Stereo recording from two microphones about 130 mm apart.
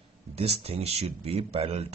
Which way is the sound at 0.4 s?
50° right (ahead or behind).